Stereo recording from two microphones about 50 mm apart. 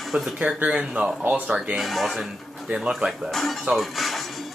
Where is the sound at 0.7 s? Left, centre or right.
Centre.